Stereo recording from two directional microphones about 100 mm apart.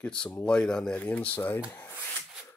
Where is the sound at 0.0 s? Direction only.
10° left (ahead or behind).